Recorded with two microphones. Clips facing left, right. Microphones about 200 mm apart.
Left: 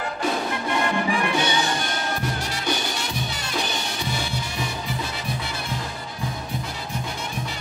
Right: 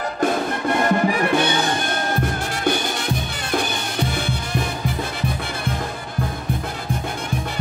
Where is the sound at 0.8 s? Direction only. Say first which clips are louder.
Right 6 dB; 45° right (ahead or behind).